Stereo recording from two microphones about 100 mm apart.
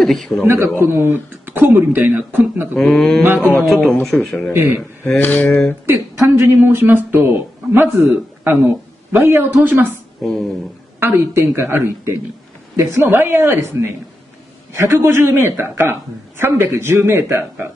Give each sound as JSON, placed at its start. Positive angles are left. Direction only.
{"t": 0.0, "sound": "a man's voice", "side_deg": 5}
{"t": 0.7, "sound": "speech", "side_deg": -25}
{"t": 2.8, "sound": "speech", "side_deg": 5}
{"t": 3.3, "sound": "speech", "side_deg": 20}
{"t": 3.8, "sound": "speech", "side_deg": 0}
{"t": 4.6, "sound": "speech", "side_deg": -20}
{"t": 5.0, "sound": "mantra", "side_deg": 20}
{"t": 6.2, "sound": "a man's voice", "side_deg": -25}
{"t": 10.2, "sound": "speech", "side_deg": 0}
{"t": 11.0, "sound": "speech", "side_deg": -20}